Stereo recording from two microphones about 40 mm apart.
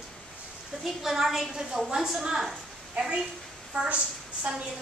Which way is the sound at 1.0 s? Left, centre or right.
Centre.